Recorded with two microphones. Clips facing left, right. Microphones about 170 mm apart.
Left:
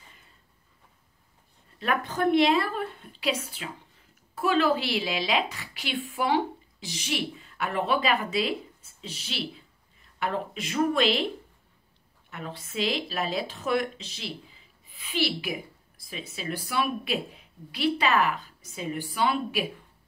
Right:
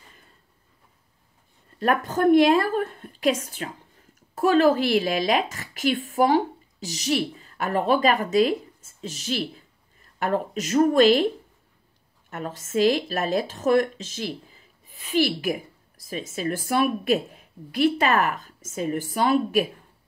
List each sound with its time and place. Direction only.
1.8 s a woman's voice: 45° right (ahead or behind)
12.3 s a woman's voice: 45° right (ahead or behind)